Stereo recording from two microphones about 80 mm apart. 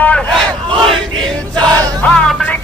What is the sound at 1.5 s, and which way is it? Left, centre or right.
Music, right.